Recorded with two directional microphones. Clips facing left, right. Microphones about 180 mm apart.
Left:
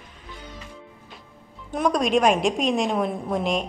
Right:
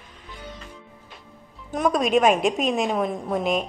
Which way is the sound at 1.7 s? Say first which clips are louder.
Right 1 dB; centre (ahead or behind).